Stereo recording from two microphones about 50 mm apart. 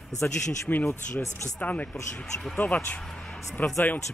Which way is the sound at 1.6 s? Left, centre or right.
Left.